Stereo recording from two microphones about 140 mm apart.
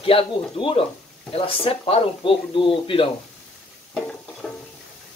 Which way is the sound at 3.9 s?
5° left (ahead or behind).